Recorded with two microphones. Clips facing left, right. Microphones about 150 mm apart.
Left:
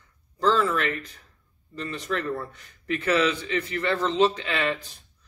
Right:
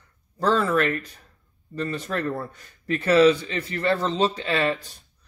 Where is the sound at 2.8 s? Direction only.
35° right (ahead or behind).